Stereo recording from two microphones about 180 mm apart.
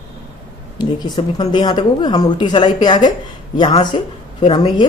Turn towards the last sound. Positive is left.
turn(degrees=25)  # may be behind; listen again after turning